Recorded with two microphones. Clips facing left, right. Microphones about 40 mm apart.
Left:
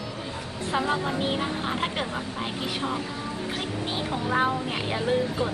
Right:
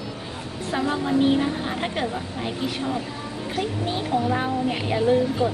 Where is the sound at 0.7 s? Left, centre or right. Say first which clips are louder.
Right 4 dB; centre.